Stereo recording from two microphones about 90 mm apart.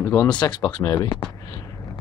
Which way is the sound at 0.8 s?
40° left (ahead or behind).